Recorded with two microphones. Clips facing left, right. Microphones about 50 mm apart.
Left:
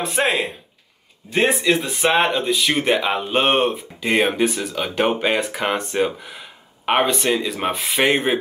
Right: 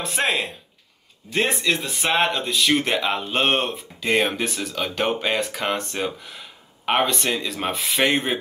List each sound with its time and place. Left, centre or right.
0.2 s speech: centre